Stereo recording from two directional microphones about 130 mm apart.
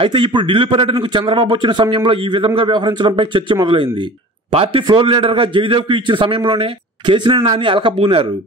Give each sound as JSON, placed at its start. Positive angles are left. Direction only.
{"t": 0.0, "sound": "a man's voice", "side_deg": -40}